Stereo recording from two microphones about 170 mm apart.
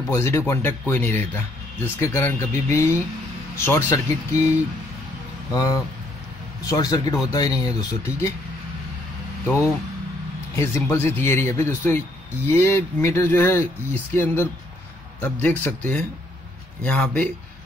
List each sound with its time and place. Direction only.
0.1 s speech: 15° left (ahead or behind)
10.5 s speech: 15° left (ahead or behind)